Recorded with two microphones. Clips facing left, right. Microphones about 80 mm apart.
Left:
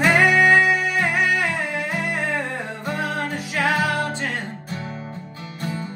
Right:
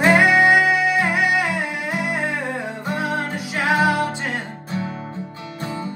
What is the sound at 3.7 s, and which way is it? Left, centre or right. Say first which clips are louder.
Music: right 5 dB; centre.